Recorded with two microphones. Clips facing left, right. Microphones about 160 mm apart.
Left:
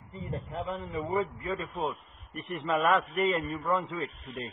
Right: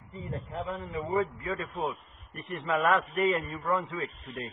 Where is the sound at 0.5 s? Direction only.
Centre (ahead or behind).